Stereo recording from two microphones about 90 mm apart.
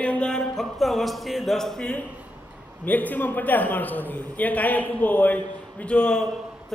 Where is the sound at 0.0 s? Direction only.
15° left (ahead or behind).